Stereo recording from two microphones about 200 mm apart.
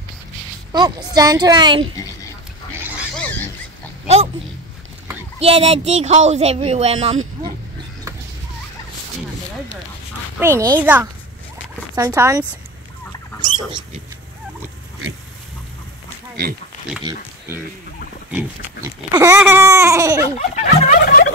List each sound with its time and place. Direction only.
0.7 s a woman's voice: 20° right (ahead or behind)
5.4 s speech: 30° right (ahead or behind)
10.4 s pig: 15° right (ahead or behind)
13.4 s a sound: 25° right (ahead or behind)
18.3 s pig: 15° right (ahead or behind)
20.3 s a sound: 40° left (ahead or behind)